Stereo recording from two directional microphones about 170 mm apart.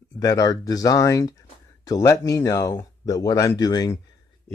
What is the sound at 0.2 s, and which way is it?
Speech, 20° left (ahead or behind).